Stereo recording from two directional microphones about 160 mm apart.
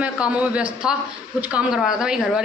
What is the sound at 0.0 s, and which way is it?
A man's voice, 10° right (ahead or behind).